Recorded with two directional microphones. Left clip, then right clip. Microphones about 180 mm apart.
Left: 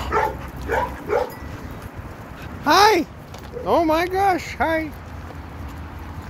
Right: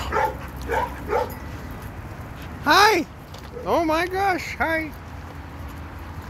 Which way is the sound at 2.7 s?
Centre (ahead or behind).